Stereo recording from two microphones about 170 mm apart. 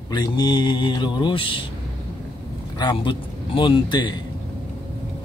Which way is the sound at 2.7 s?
25° left (ahead or behind).